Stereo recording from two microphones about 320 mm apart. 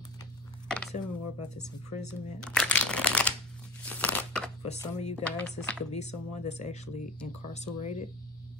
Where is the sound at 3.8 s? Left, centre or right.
Centre.